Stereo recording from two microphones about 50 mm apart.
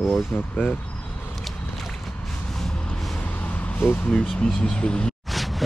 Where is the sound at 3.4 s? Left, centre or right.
Left.